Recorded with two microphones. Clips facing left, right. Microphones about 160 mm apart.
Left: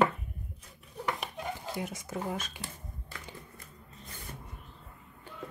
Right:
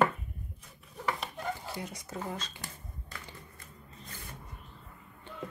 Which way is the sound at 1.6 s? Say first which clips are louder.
Left 3 dB; 20° left (ahead or behind).